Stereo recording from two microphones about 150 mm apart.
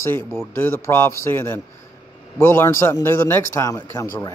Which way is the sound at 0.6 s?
15° left (ahead or behind).